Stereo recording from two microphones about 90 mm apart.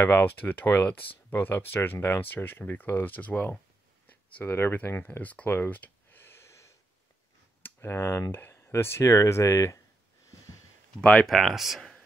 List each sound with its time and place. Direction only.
0.0 s speech: 20° left (ahead or behind)
11.0 s speech: 10° left (ahead or behind)
11.3 s speech: centre (ahead or behind)